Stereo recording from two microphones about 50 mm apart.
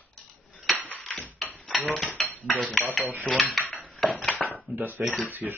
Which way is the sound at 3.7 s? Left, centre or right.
Left.